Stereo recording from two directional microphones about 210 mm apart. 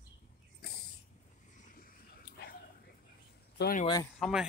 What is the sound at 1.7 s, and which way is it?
Dog, 45° left (ahead or behind).